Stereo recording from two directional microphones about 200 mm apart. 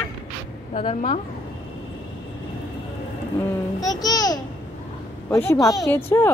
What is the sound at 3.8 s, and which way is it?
A child's voice, 20° left (ahead or behind).